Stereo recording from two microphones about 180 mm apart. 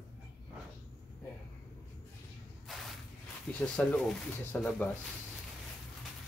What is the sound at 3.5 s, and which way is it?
Speech, 5° left (ahead or behind).